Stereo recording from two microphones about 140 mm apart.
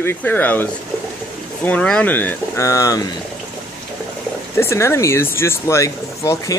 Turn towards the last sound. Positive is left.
turn(degrees=20)  # may be behind; listen again after turning